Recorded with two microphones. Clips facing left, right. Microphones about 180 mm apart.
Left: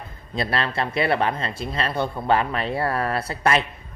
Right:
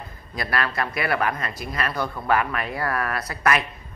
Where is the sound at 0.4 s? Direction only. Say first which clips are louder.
Left 2 dB; 25° left (ahead or behind).